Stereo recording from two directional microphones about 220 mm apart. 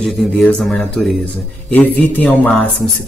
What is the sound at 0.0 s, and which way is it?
Speech, centre (ahead or behind).